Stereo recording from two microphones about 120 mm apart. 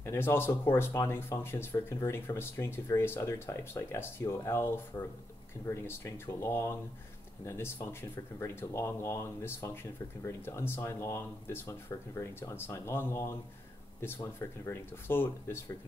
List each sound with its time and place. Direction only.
0.0 s speech: 20° left (ahead or behind)